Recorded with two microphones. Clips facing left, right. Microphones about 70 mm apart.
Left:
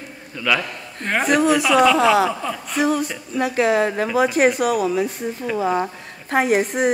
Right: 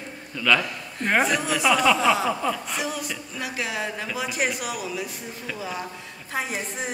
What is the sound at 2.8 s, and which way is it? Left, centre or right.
Speech, left.